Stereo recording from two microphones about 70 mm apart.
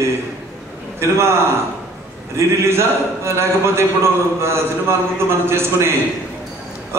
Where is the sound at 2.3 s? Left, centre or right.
Right.